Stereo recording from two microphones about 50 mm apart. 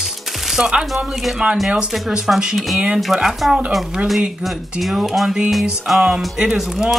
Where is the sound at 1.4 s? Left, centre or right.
Right.